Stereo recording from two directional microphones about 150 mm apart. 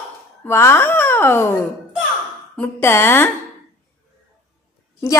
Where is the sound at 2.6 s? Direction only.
15° left (ahead or behind).